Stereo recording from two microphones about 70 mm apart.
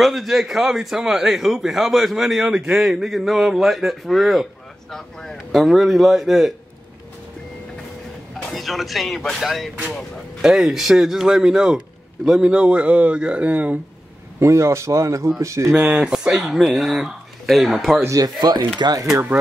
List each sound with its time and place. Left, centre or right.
0.0 s a man's voice: centre
8.4 s a man's voice: centre; by 13.7 s right
14.4 s speech: right
15.7 s a man's voice: centre
18.0 s speech: right
18.8 s speech: right